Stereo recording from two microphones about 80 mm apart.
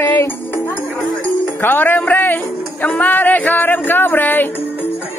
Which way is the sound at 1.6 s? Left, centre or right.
Left.